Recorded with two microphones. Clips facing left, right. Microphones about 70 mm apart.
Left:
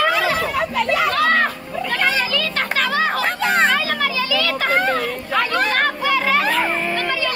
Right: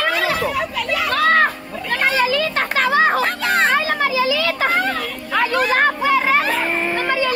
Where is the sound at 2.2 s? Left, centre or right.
Centre.